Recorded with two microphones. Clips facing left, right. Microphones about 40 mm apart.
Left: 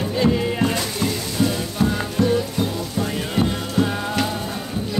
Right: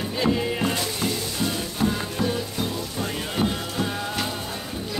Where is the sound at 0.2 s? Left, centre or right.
Centre.